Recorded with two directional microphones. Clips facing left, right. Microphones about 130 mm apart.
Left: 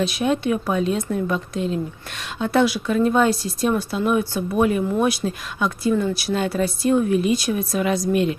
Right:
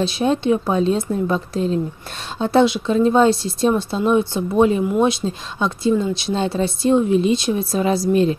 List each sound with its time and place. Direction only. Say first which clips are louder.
0.0 s a woman's voice: right 2 dB; 30° right (ahead or behind)